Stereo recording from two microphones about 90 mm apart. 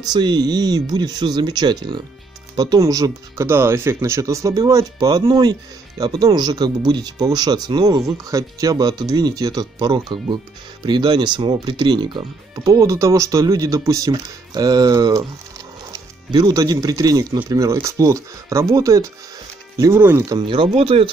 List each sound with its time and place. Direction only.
0.0 s speech: 50° right (ahead or behind)
2.8 s speech: 35° right (ahead or behind); by 12.3 s 55° right (ahead or behind)
12.5 s speech: 40° right (ahead or behind)
16.3 s speech: 45° right (ahead or behind)
19.9 s speech: 20° right (ahead or behind)
20.3 s speech: 75° right (ahead or behind); by 21.1 s 90° right